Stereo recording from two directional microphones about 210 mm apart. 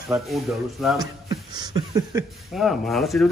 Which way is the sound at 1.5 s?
20° right (ahead or behind).